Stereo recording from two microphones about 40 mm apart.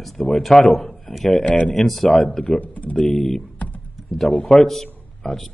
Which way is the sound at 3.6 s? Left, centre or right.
Left.